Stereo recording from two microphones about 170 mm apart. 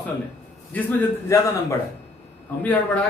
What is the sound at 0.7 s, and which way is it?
Speech, 15° left (ahead or behind).